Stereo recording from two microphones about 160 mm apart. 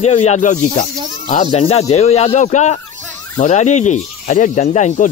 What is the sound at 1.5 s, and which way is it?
Speech, 40° left (ahead or behind).